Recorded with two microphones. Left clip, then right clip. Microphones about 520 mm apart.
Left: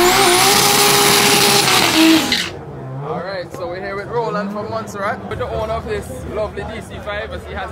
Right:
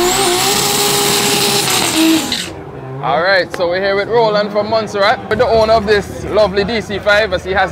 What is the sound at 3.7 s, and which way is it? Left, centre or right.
Speech, right.